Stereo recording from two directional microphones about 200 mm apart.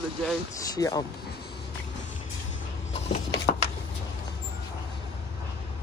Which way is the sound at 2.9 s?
35° left (ahead or behind).